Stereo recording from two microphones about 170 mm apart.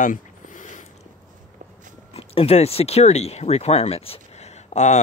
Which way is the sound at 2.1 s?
35° left (ahead or behind).